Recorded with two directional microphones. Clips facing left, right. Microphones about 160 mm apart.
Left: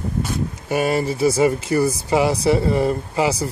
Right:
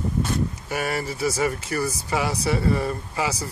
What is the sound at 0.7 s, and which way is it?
Speech, 20° left (ahead or behind).